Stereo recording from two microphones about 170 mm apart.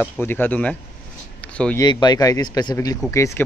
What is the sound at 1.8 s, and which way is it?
Speech, 25° left (ahead or behind).